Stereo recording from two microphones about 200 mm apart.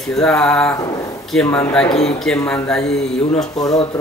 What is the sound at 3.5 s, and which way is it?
Speech, 20° left (ahead or behind).